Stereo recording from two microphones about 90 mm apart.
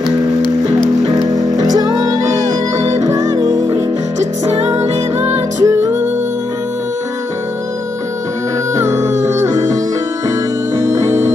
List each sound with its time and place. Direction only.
1.8 s music: 45° right (ahead or behind)
5.6 s music: 30° right (ahead or behind)
8.7 s music: 30° right (ahead or behind)
10.9 s music: 30° right (ahead or behind)